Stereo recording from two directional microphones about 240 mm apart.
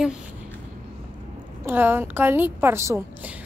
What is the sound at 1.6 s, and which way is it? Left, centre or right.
A woman's voice, centre.